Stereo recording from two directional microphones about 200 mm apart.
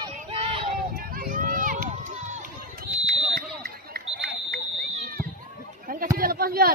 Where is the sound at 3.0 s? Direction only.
30° right (ahead or behind).